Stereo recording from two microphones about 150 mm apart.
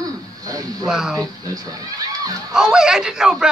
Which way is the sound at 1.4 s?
25° right (ahead or behind).